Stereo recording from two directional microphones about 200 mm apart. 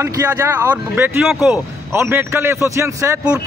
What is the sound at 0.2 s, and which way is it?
Speech, 10° right (ahead or behind).